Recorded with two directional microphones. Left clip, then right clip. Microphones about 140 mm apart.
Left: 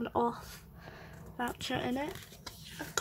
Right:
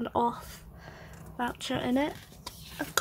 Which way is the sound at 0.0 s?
5° right (ahead or behind).